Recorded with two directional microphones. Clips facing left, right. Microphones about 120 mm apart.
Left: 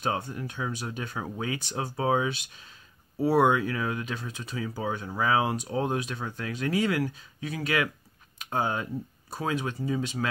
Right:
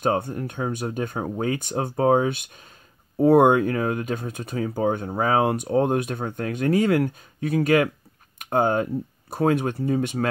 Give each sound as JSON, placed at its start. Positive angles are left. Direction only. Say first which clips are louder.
{"t": 0.0, "sound": "speech", "louder": "right 7 dB", "side_deg": -50}